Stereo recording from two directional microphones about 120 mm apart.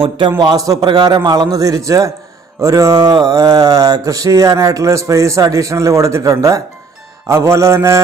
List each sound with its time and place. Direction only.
0.4 s a man's voice: 35° right (ahead or behind)
2.6 s mantra: 25° right (ahead or behind)